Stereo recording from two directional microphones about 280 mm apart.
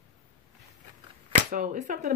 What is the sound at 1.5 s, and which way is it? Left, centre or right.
Speech, right.